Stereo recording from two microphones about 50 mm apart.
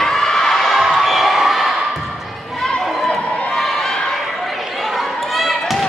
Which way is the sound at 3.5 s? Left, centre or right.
Centre.